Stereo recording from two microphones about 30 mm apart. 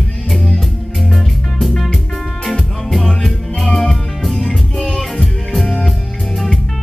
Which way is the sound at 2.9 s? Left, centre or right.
Centre.